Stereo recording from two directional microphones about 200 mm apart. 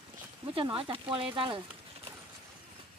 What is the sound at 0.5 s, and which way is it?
Speech, 25° right (ahead or behind).